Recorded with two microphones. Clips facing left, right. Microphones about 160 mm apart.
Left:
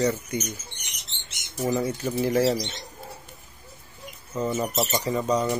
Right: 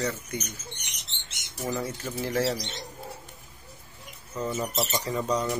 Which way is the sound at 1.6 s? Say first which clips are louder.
Left 6 dB; 15° left (ahead or behind).